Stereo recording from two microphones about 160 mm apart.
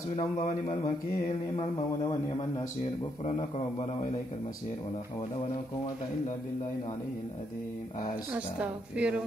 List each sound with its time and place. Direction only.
0.1 s speech: 40° left (ahead or behind)
3.3 s a man's voice: 40° left (ahead or behind)
8.3 s a woman's voice: 5° right (ahead or behind)